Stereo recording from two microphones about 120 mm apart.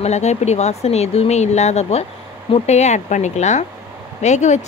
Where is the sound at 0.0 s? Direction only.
70° left (ahead or behind).